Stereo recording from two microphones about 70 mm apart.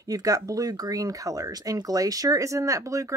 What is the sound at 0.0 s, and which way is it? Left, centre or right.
Speech, right.